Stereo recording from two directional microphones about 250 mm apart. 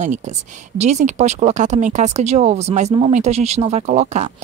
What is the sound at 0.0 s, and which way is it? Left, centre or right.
A woman's voice, right.